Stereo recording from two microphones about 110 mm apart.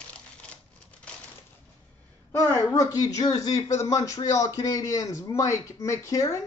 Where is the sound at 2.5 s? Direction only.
30° left (ahead or behind).